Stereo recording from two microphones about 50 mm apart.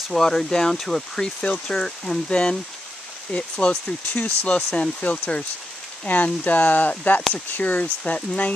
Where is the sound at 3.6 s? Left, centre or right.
Left.